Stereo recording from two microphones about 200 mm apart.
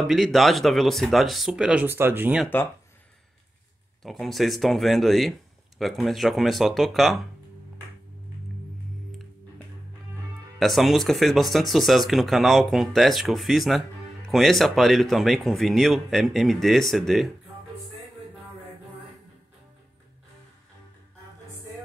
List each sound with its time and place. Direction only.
0.0 s speech: centre (ahead or behind)
4.0 s speech: centre (ahead or behind)
10.6 s speech: centre (ahead or behind)